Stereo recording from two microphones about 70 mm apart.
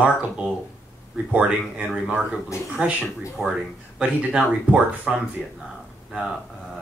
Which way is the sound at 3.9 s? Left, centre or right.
Centre.